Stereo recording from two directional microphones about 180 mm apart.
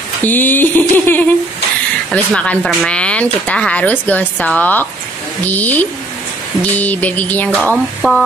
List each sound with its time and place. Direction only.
0.2 s speech: 10° left (ahead or behind)